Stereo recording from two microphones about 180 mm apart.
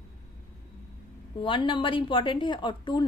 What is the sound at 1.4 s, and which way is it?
A woman's voice, 25° left (ahead or behind).